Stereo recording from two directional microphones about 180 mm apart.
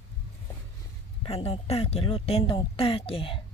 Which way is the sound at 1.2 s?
35° left (ahead or behind).